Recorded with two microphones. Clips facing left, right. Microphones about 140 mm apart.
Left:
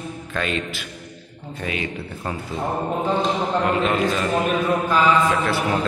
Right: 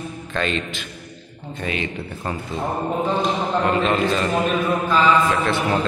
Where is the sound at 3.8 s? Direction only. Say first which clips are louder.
Right 1 dB; 5° left (ahead or behind).